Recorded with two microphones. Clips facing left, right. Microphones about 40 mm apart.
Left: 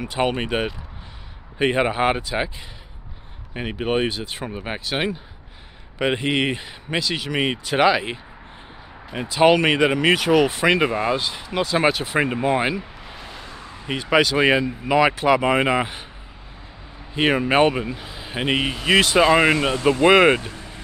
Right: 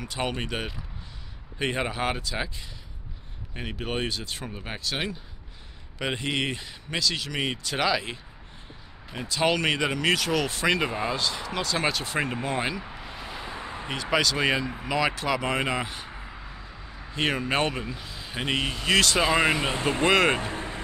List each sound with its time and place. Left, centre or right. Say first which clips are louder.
0.0 s speech: left 8 dB; left
3.5 s speech: left 8 dB; left
12.8 s a sound: even; centre
13.5 s a sound: right 3 dB; right
14.1 s speech: left 7 dB; left
17.1 s speech: left 7 dB; left
19.7 s speech: left 7 dB; centre
20.1 s speech: left 7 dB; left
20.3 s vehicle: even; right